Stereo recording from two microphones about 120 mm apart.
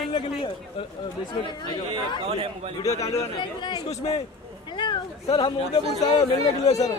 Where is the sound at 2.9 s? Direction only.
65° left (ahead or behind).